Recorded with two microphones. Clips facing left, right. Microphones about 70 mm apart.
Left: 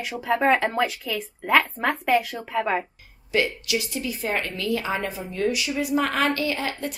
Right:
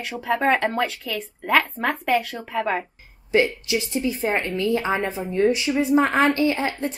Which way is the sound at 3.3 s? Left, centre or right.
Right.